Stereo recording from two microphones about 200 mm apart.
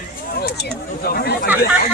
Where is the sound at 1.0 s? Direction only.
50° left (ahead or behind).